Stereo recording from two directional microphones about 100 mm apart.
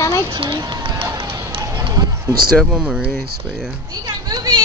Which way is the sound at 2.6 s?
5° right (ahead or behind).